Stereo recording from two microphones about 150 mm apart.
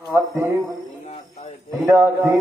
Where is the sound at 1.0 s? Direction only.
45° left (ahead or behind).